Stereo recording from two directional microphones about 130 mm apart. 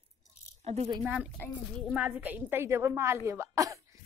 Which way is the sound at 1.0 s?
10° right (ahead or behind).